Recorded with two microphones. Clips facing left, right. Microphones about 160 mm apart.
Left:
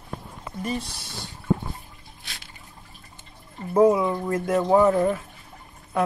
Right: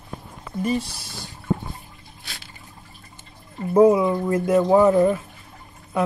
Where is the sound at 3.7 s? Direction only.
10° right (ahead or behind).